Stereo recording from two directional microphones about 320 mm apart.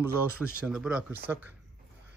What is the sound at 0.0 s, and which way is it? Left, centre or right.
Speech, centre.